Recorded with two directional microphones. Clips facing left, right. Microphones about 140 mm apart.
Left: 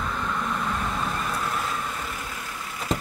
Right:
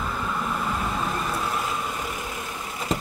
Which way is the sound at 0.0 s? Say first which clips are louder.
Even; 5° right (ahead or behind).